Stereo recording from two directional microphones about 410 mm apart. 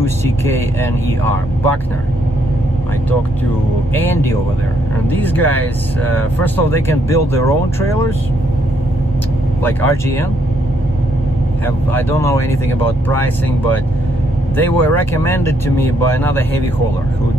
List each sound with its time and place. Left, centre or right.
3.9 s speech: centre
9.6 s speech: centre
11.6 s speech: centre